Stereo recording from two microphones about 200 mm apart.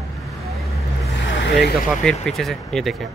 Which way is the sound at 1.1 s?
65° left (ahead or behind).